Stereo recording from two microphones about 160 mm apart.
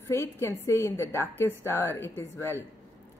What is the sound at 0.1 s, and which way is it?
Speech, 15° left (ahead or behind).